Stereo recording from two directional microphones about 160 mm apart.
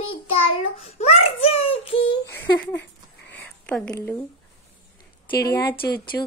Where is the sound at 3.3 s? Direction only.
10° left (ahead or behind).